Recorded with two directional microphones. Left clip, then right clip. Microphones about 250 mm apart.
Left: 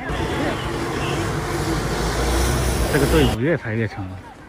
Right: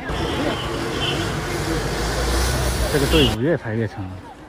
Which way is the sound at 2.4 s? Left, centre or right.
Left.